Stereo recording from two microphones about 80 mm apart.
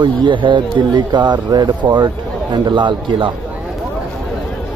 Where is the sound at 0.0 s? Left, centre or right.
Right.